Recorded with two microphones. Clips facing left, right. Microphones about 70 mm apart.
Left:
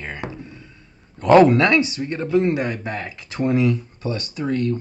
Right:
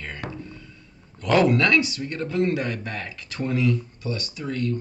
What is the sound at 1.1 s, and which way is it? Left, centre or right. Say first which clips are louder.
Speech: left 7 dB; left.